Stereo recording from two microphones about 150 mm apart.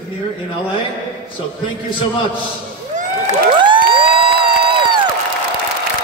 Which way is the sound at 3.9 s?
35° right (ahead or behind).